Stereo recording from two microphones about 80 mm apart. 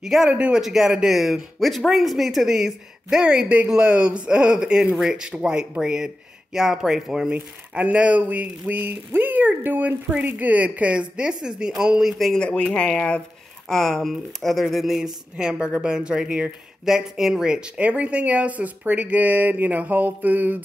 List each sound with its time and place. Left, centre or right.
0.0 s speech: centre
0.3 s speech: centre
0.6 s speech: centre
7.3 s speech: centre
12.4 s speech: centre; by 20.6 s right